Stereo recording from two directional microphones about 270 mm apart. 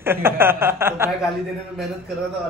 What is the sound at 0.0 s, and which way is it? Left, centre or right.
Speech, centre.